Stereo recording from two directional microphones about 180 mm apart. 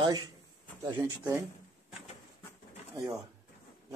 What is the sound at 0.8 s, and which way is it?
Speech, 20° right (ahead or behind).